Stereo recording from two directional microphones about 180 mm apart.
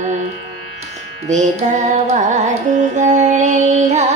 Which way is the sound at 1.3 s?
40° right (ahead or behind).